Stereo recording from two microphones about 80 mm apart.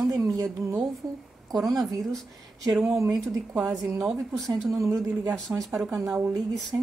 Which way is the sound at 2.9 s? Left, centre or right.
Right.